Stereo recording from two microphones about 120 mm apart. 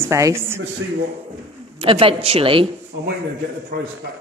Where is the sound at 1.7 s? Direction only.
50° right (ahead or behind).